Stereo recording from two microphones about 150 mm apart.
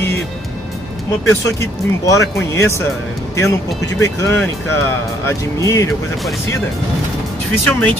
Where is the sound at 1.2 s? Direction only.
20° left (ahead or behind).